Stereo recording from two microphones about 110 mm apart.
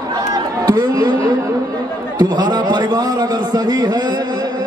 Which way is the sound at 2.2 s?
40° right (ahead or behind).